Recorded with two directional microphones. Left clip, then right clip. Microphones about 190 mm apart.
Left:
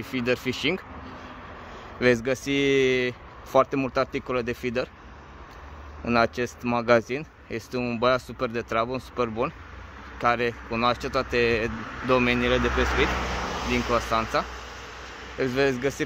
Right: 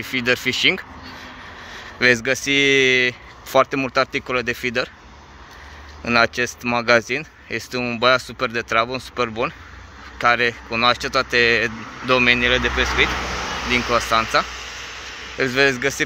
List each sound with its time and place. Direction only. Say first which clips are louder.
0.0 s speech: right 7 dB; 5° left (ahead or behind)
6.0 s speech: right 6 dB; 5° left (ahead or behind)
11.7 s speech: right 2 dB; 30° right (ahead or behind)
12.1 s speech: right 6 dB; 10° left (ahead or behind)
13.7 s speech: right 7 dB; 5° left (ahead or behind)
14.4 s a sound: right 7 dB; 35° left (ahead or behind)
15.3 s speech: right 7 dB; centre (ahead or behind)